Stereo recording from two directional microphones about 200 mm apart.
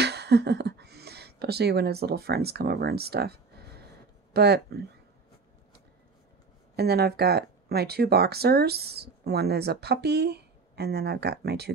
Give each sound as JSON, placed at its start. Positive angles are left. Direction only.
{"t": 0.0, "sound": "speech", "side_deg": -55}
{"t": 6.8, "sound": "speech", "side_deg": -50}